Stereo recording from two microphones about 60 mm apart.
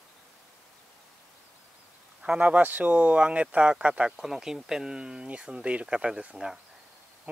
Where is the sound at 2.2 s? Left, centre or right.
Right.